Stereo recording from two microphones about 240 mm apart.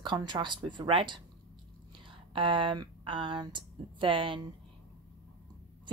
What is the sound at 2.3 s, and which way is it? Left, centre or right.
Speech, right.